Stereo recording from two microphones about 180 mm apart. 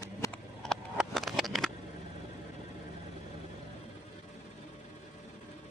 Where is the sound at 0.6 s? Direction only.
Centre (ahead or behind).